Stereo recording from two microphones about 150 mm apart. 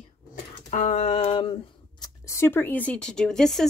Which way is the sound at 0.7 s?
55° left (ahead or behind).